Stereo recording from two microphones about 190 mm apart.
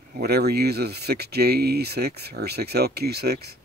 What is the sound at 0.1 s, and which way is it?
Speech, 55° right (ahead or behind).